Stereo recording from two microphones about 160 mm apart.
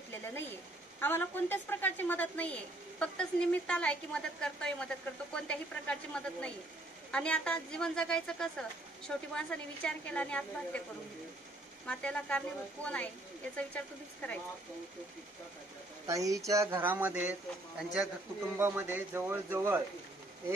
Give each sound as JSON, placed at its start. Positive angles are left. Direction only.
{"t": 0.1, "sound": "a woman's voice", "side_deg": 15}
{"t": 11.8, "sound": "a woman's voice", "side_deg": 5}
{"t": 16.1, "sound": "speech", "side_deg": -20}
{"t": 18.6, "sound": "speech", "side_deg": -10}